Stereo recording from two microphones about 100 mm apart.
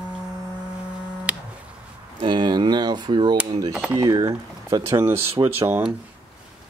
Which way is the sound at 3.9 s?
35° right (ahead or behind).